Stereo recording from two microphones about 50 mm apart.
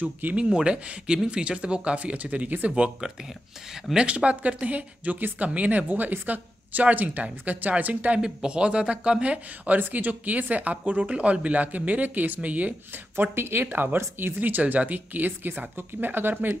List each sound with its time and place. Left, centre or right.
0.0 s speech: right
0.4 s speech: centre
2.7 s speech: centre
8.2 s speech: centre
13.1 s speech: right